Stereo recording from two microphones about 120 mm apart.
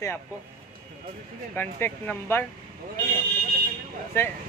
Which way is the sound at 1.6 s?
15° left (ahead or behind).